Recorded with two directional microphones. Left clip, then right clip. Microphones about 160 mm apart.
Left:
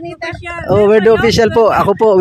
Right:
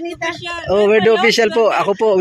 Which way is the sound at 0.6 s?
40° left (ahead or behind).